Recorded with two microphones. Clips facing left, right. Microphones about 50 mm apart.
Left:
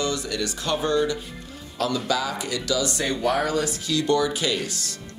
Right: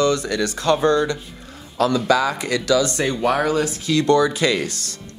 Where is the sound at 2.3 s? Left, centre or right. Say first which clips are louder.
Right 7 dB; right.